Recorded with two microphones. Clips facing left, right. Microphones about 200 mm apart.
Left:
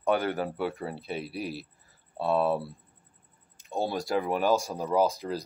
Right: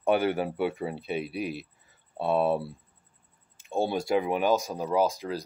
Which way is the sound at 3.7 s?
25° right (ahead or behind).